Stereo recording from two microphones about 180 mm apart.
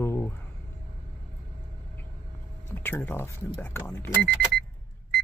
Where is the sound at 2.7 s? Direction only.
10° left (ahead or behind).